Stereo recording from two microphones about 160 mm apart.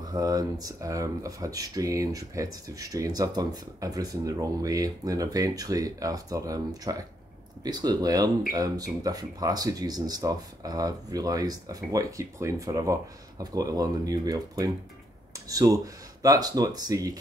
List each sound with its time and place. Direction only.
0.1 s speech: 25° right (ahead or behind)